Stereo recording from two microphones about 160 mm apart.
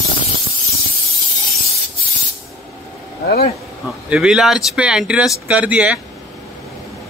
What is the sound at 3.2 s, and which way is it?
Speech, 75° left (ahead or behind).